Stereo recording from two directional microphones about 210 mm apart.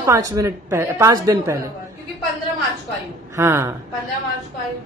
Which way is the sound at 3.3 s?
10° right (ahead or behind).